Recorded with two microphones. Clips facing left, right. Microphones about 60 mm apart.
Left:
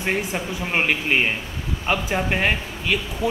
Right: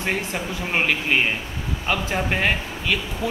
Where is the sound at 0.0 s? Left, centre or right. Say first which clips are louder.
Left 1 dB; centre.